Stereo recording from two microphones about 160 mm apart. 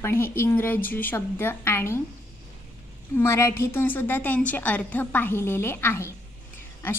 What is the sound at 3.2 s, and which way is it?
A woman's voice, 15° left (ahead or behind).